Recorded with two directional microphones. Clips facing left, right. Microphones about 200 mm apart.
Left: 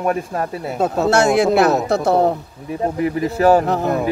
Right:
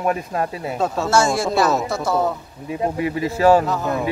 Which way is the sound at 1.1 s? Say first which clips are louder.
Left 5 dB; 65° left (ahead or behind).